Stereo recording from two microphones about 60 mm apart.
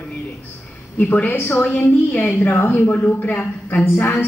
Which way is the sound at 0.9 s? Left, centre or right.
Left.